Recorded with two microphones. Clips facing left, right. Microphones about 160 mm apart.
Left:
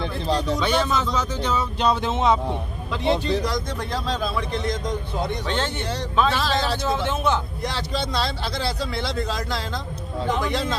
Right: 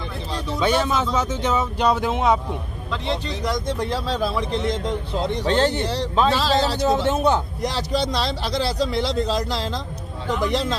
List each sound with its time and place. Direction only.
0.6 s speech: 10° right (ahead or behind)
5.3 s a man's voice: 35° right (ahead or behind)
10.5 s a man's voice: 35° right (ahead or behind)